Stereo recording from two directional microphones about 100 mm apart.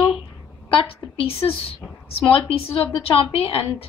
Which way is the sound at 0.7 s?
70° left (ahead or behind).